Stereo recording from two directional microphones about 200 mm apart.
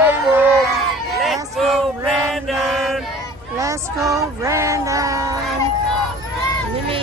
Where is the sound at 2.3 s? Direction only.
Centre (ahead or behind).